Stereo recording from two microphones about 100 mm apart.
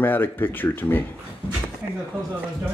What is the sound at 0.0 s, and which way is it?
Speech, 20° left (ahead or behind).